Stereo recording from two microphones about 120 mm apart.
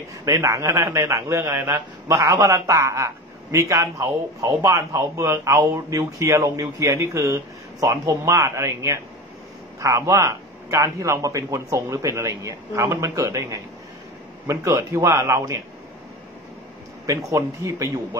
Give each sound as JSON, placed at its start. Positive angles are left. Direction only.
{"t": 0.2, "sound": "a man's voice", "side_deg": -25}
{"t": 17.0, "sound": "a man's voice", "side_deg": -25}